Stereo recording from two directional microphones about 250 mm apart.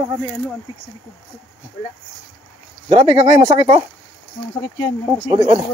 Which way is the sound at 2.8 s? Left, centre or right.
Right.